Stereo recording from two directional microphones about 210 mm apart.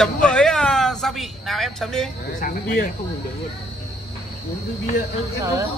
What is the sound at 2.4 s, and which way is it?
Speech, 40° left (ahead or behind).